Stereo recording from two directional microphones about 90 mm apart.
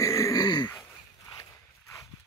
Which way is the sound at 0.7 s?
45° left (ahead or behind).